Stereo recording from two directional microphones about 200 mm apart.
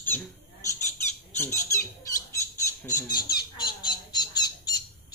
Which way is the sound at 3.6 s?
20° left (ahead or behind).